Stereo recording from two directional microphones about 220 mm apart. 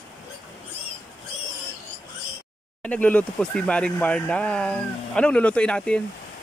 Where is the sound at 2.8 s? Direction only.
5° left (ahead or behind).